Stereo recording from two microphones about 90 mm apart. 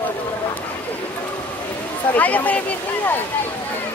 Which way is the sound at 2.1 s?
20° left (ahead or behind).